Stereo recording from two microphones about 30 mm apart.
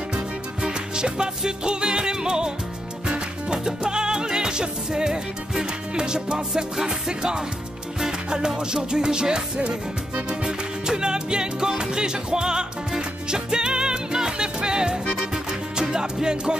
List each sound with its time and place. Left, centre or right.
0.1 s music: right
10.4 s music: right